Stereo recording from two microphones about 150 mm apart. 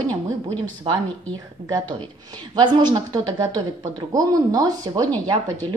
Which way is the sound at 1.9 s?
30° right (ahead or behind).